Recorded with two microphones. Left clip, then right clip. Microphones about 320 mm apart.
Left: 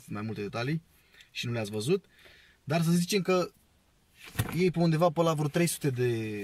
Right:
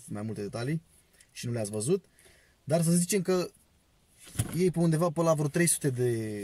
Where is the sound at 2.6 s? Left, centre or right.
Left.